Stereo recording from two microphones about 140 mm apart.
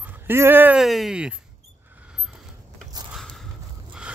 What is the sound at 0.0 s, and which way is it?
Speech, 15° right (ahead or behind).